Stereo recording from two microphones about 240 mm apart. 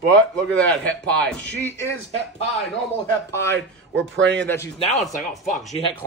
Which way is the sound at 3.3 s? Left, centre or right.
Centre.